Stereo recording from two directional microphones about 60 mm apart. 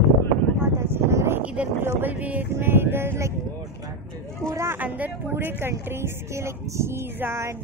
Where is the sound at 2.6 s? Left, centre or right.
Right.